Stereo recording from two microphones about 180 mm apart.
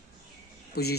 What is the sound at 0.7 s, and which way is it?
Speech, 60° left (ahead or behind).